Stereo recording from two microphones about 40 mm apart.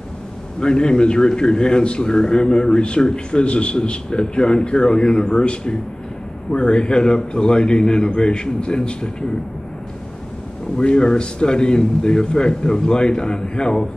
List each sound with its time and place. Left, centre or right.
0.6 s a man's voice: left
10.8 s a man's voice: left